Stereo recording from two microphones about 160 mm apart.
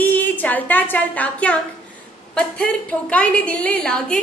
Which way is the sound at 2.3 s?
5° left (ahead or behind).